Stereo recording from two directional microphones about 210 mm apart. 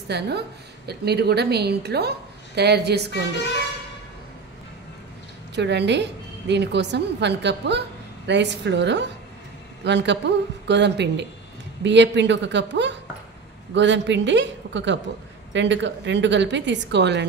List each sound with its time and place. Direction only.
0.1 s a woman's voice: 50° right (ahead or behind)
5.5 s a woman's voice: 55° right (ahead or behind)